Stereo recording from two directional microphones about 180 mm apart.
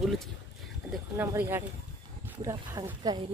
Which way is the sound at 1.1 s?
10° right (ahead or behind).